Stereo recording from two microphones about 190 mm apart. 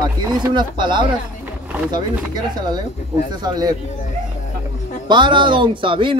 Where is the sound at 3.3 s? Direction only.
20° right (ahead or behind).